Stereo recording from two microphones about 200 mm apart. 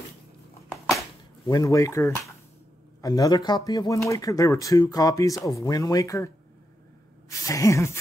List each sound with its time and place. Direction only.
1.5 s speech: 15° left (ahead or behind)